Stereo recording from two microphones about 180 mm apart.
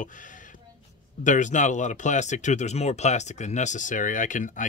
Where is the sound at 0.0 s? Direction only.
45° left (ahead or behind).